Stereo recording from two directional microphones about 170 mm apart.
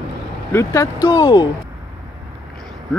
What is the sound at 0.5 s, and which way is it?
Speech, 20° left (ahead or behind).